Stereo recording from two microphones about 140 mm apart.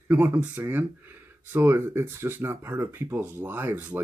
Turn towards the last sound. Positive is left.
turn(degrees=-15)  # may be behind; listen again after turning